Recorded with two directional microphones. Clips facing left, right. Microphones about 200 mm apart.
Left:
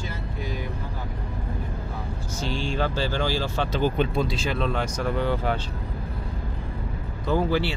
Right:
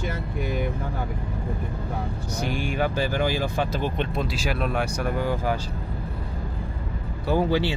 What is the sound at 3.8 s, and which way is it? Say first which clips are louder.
Speech: left 3 dB; centre (ahead or behind).